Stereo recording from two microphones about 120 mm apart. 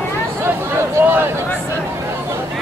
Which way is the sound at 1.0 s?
20° right (ahead or behind).